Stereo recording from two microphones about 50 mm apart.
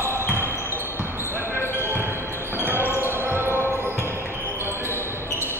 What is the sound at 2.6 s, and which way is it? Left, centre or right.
Basketball bounce, right.